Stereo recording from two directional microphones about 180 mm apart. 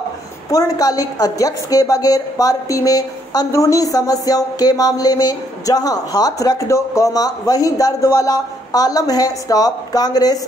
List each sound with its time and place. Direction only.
0.5 s a woman's voice: 20° left (ahead or behind)